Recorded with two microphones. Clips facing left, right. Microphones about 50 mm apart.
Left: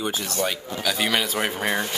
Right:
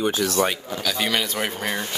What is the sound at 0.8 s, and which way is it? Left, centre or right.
Speech, centre.